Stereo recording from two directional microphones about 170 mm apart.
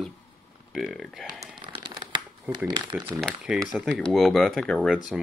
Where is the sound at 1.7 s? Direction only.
30° right (ahead or behind).